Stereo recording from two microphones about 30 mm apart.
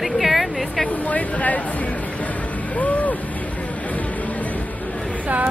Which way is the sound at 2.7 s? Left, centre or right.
Left.